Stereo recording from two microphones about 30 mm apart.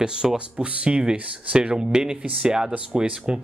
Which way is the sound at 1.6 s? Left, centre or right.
Right.